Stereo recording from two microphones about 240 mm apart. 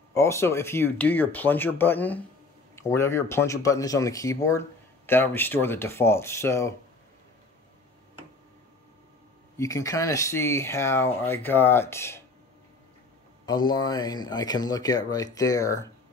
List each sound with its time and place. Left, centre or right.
0.1 s speech: centre
9.6 s speech: centre
13.5 s speech: centre